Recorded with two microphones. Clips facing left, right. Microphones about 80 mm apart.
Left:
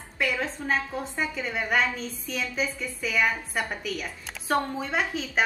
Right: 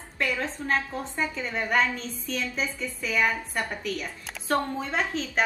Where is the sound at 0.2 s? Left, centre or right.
Centre.